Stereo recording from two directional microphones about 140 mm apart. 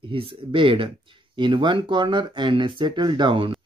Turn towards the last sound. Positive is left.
turn(degrees=-35)  # may be behind; listen again after turning